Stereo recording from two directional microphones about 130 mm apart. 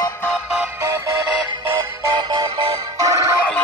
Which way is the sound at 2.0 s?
35° right (ahead or behind).